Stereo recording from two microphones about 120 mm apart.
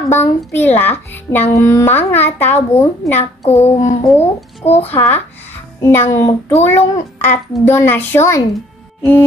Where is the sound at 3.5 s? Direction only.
60° left (ahead or behind).